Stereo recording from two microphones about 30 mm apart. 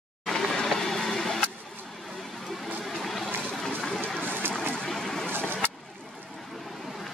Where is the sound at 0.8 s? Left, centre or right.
Centre.